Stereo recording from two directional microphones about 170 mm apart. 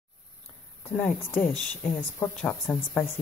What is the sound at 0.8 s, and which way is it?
Speech, 10° left (ahead or behind).